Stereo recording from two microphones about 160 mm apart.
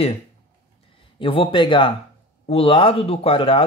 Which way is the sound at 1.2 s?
35° left (ahead or behind).